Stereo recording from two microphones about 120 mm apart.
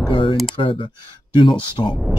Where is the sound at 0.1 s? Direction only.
45° left (ahead or behind).